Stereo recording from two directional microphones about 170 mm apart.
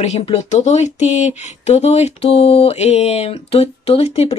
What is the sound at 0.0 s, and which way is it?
A woman's voice, 40° left (ahead or behind).